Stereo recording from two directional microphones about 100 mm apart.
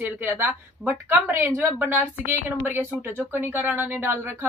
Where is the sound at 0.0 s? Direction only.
20° right (ahead or behind).